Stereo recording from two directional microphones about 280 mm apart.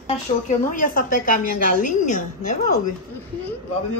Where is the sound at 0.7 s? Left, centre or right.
Left.